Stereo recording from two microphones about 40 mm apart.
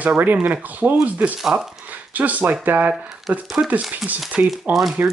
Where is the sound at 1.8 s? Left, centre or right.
Right.